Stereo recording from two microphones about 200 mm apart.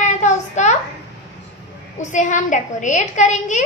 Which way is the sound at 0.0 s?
35° left (ahead or behind).